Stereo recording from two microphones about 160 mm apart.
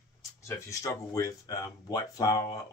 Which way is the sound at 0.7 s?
20° left (ahead or behind).